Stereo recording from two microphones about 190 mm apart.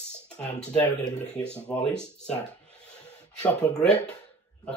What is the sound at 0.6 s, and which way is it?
Speech, 10° left (ahead or behind).